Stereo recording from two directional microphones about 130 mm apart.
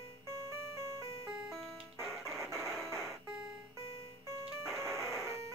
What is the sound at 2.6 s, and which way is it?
Music, centre (ahead or behind).